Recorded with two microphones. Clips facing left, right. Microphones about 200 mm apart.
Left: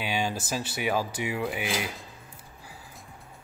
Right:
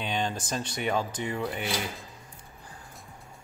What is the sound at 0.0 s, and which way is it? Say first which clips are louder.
Speech: left 1 dB; 5° left (ahead or behind).